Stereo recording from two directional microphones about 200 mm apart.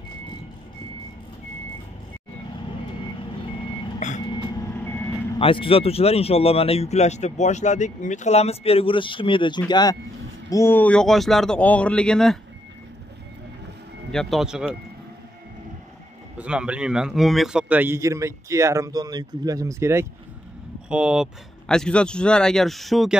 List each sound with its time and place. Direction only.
4.0 s vehicle: 35° left (ahead or behind)
5.4 s speech: 25° left (ahead or behind); by 12.4 s 5° left (ahead or behind)
14.1 s speech: centre (ahead or behind)
16.3 s a man's voice: 5° right (ahead or behind)